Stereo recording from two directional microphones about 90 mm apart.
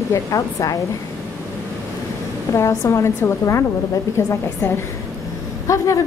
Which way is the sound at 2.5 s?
30° left (ahead or behind).